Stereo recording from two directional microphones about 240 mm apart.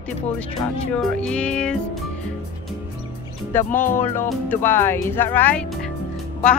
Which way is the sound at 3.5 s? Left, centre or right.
Centre.